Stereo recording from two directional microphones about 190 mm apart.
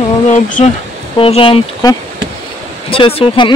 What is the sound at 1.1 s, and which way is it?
Speech, 30° left (ahead or behind).